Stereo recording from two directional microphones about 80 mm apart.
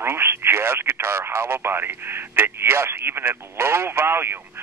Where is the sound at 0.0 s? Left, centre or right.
Right.